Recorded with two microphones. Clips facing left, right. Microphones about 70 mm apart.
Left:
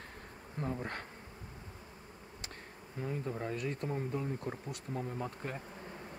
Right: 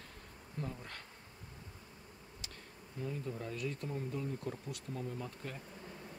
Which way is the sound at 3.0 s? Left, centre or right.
Left.